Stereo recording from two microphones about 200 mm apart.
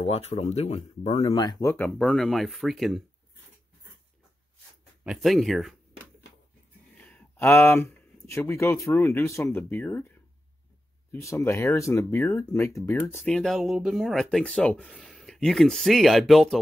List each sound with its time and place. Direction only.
0.0 s speech: 30° left (ahead or behind)
1.2 s speech: 20° left (ahead or behind)
2.0 s speech: centre (ahead or behind)
5.0 s speech: centre (ahead or behind)
7.0 s speech: 5° left (ahead or behind)